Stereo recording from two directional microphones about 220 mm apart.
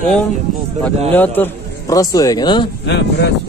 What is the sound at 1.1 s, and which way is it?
Speech, 10° left (ahead or behind).